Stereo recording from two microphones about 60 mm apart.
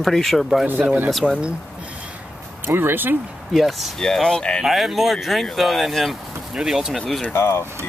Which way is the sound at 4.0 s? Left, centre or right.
Centre.